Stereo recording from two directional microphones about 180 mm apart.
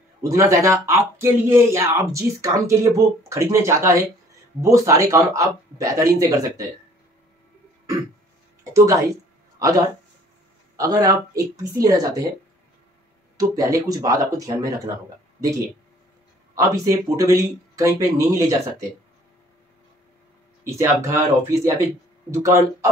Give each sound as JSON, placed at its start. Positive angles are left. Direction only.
{"t": 0.2, "sound": "speech", "side_deg": -20}
{"t": 8.7, "sound": "speech", "side_deg": -15}
{"t": 13.4, "sound": "speech", "side_deg": -20}
{"t": 16.6, "sound": "speech", "side_deg": -20}
{"t": 20.6, "sound": "speech", "side_deg": -15}